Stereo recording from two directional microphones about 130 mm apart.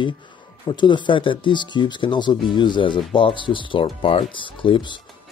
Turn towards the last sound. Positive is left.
turn(degrees=45)  # may be behind; listen again after turning